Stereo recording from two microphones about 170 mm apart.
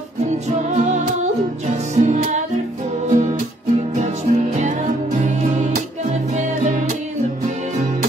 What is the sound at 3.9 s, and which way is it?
Music, 45° right (ahead or behind).